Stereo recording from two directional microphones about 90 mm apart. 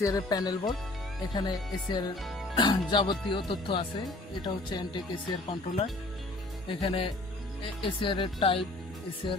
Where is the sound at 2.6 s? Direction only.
60° left (ahead or behind).